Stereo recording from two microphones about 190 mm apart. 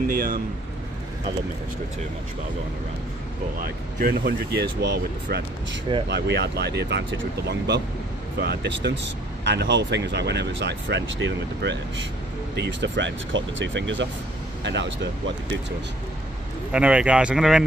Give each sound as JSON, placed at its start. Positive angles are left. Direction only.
{"t": 0.1, "sound": "speech", "side_deg": -50}
{"t": 3.5, "sound": "speech", "side_deg": -55}
{"t": 16.7, "sound": "speech", "side_deg": -5}